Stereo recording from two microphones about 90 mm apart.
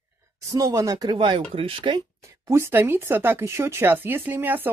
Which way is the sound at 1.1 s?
75° right (ahead or behind).